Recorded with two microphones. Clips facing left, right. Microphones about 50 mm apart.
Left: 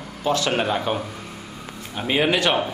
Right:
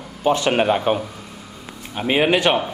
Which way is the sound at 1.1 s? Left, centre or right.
Left.